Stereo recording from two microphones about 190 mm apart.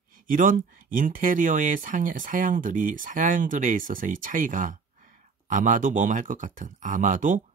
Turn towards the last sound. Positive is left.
turn(degrees=-45)  # may be behind; listen again after turning